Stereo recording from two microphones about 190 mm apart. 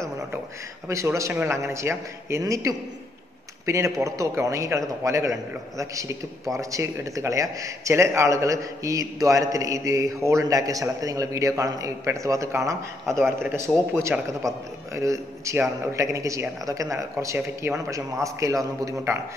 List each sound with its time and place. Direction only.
0.8 s a man's voice: 15° right (ahead or behind)
13.0 s a man's voice: centre (ahead or behind)
13.4 s a man's voice: 15° right (ahead or behind)